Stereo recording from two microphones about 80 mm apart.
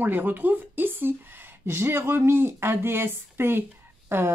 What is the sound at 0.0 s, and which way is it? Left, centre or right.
Speech, right.